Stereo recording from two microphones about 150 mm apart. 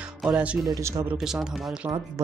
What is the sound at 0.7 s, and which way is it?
Speech, 20° right (ahead or behind).